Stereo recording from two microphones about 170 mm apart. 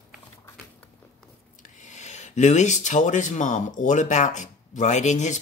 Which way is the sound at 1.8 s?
45° left (ahead or behind).